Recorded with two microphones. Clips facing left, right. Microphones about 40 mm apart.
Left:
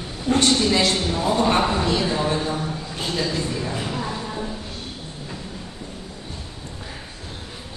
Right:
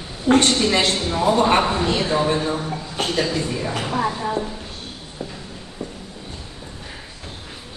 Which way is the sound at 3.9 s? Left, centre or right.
Right.